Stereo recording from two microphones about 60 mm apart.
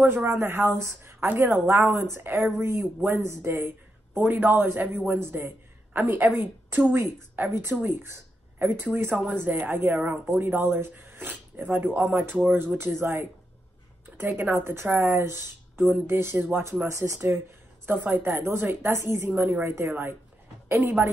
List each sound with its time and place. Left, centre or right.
0.0 s a woman's voice: right
10.4 s a woman's voice: right
16.8 s speech: right
17.8 s a woman's voice: right